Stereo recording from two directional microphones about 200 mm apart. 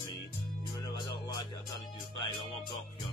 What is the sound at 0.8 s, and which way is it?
Music, 20° left (ahead or behind).